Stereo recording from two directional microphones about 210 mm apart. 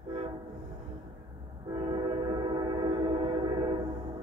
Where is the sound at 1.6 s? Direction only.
20° right (ahead or behind).